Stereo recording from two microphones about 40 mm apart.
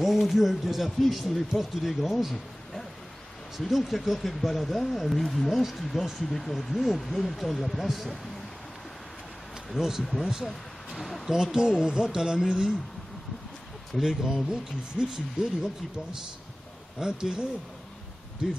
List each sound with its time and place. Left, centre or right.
0.0 s speech: centre
3.5 s speech: centre
6.3 s speech: centre
9.8 s speech: centre
11.0 s speech: centre
11.2 s speech: centre
13.9 s speech: centre